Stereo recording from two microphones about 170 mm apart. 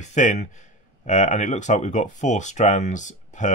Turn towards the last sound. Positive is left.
turn(degrees=45)  # may be behind; listen again after turning